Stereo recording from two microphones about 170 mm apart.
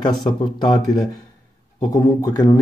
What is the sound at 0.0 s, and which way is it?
Speech, 25° left (ahead or behind).